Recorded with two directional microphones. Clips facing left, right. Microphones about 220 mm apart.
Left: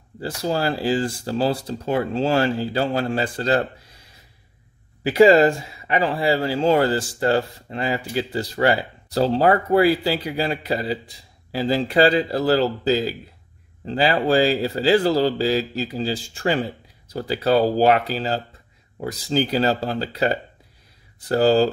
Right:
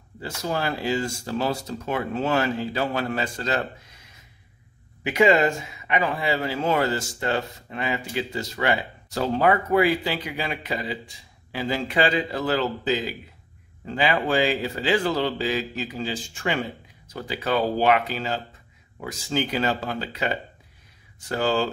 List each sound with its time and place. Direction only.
0.2 s speech: 35° left (ahead or behind)
5.0 s speech: 35° left (ahead or behind)